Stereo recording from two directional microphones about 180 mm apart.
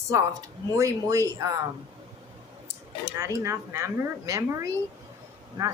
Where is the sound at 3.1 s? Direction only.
15° right (ahead or behind).